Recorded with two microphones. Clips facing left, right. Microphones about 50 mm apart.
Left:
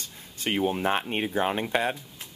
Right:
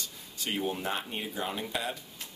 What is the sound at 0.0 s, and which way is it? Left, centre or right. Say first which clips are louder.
Speech: left 5 dB; left.